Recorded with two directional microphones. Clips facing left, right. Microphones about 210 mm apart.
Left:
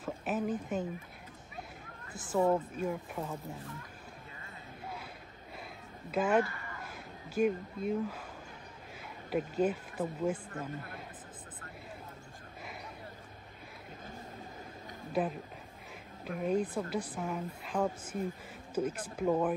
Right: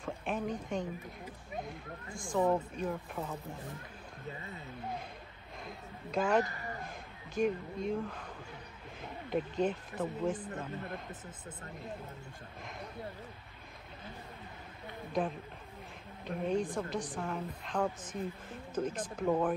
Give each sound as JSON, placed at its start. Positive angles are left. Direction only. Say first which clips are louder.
{"t": 0.0, "sound": "a woman's voice", "louder": "left 2 dB", "side_deg": 5}
{"t": 2.1, "sound": "speech", "louder": "left 1 dB", "side_deg": 5}
{"t": 6.1, "sound": "a woman's voice", "louder": "left 1 dB", "side_deg": 5}
{"t": 6.4, "sound": "a sound", "louder": "right 2 dB", "side_deg": -40}
{"t": 6.9, "sound": "speech", "louder": "left 1 dB", "side_deg": 5}
{"t": 9.3, "sound": "a woman's voice", "louder": "left 2 dB", "side_deg": 5}
{"t": 16.3, "sound": "a woman's voice", "louder": "left 1 dB", "side_deg": 5}